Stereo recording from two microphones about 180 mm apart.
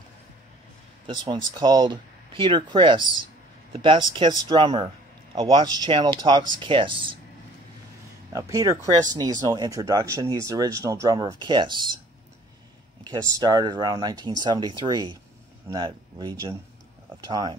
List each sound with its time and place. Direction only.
1.0 s speech: 25° right (ahead or behind)
8.3 s speech: 20° right (ahead or behind)
13.0 s speech: 20° right (ahead or behind)